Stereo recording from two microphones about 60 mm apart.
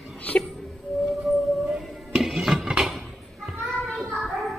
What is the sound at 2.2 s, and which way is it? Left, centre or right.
Music, centre.